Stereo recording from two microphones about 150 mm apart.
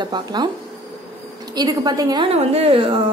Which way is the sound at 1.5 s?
25° right (ahead or behind).